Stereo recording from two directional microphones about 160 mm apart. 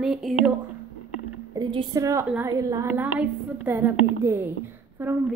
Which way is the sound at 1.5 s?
30° right (ahead or behind).